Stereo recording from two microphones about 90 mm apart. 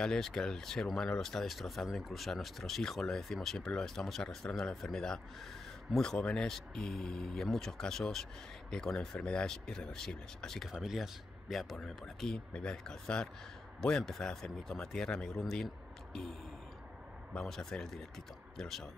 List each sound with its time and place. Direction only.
0.0 s speech: 5° left (ahead or behind)